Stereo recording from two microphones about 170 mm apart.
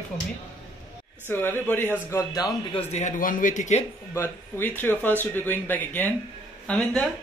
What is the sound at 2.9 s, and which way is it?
Speech, 45° left (ahead or behind).